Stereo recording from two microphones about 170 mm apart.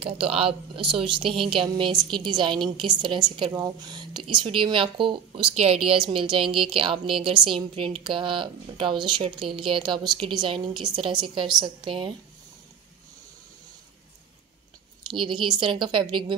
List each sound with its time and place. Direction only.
0.0 s a woman's voice: 35° right (ahead or behind)
15.0 s speech: 30° right (ahead or behind)